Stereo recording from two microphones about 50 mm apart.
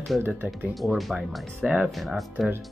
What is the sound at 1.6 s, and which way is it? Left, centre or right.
Speech, centre.